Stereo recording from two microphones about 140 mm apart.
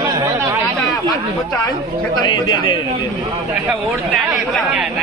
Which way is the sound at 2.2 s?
35° left (ahead or behind).